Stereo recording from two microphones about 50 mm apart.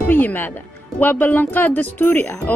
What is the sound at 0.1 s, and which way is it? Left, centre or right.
A woman's voice, left.